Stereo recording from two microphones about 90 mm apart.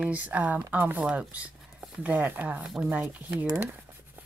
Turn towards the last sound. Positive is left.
turn(degrees=-15)  # may be behind; listen again after turning